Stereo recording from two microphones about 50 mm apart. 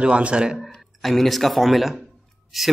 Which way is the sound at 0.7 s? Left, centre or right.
Centre.